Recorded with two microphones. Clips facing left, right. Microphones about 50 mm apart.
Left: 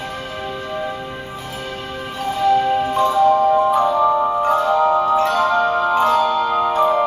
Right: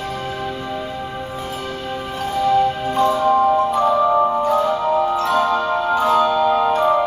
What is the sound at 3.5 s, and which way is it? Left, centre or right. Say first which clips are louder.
Music: left 1 dB; centre.